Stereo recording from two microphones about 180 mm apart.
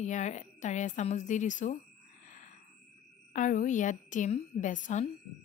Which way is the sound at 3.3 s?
45° left (ahead or behind).